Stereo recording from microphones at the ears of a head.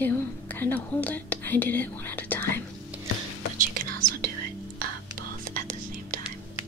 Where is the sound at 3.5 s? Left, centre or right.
Right.